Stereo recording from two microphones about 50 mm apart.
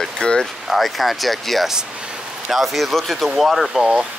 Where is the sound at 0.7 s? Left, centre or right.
Centre.